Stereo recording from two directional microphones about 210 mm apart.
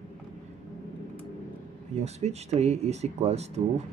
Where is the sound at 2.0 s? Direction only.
30° right (ahead or behind).